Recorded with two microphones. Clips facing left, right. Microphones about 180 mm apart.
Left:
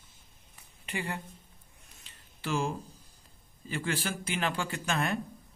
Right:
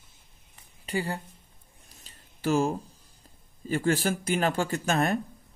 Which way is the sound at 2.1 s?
40° right (ahead or behind).